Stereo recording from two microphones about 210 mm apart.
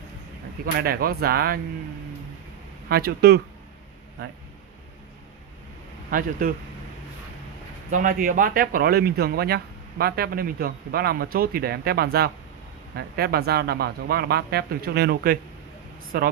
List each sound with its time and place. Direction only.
0.7 s speech: 45° right (ahead or behind)
2.9 s speech: 50° right (ahead or behind)
6.0 s speech: 40° right (ahead or behind)
7.9 s speech: 40° right (ahead or behind)